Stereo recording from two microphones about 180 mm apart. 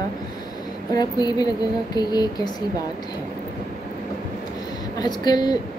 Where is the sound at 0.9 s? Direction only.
20° left (ahead or behind).